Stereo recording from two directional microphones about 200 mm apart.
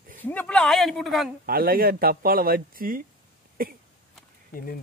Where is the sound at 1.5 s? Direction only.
45° right (ahead or behind).